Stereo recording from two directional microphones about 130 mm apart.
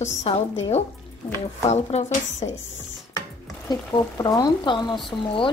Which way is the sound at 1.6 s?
60° left (ahead or behind).